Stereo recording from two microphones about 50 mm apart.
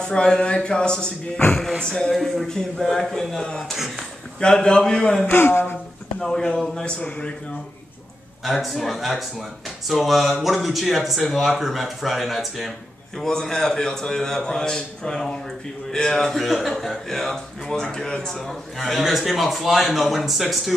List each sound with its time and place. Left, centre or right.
0.0 s a man's voice: centre
2.1 s a man's voice: centre
3.7 s a man's voice: centre
4.4 s a man's voice: centre
5.2 s speech: left
6.4 s a man's voice: centre
6.8 s a man's voice: left
8.5 s a man's voice: centre
13.2 s a man's voice: centre